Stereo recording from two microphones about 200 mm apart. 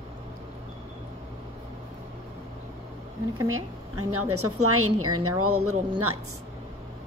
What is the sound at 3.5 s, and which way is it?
A woman's voice, 90° right.